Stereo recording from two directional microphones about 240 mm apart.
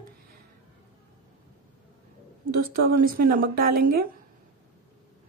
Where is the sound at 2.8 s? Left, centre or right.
Right.